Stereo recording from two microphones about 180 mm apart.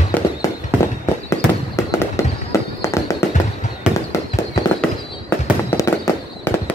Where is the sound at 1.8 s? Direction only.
15° left (ahead or behind).